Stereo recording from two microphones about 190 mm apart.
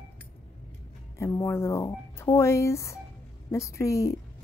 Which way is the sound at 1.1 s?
15° left (ahead or behind).